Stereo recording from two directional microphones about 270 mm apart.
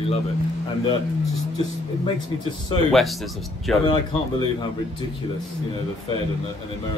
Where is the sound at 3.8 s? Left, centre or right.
Centre.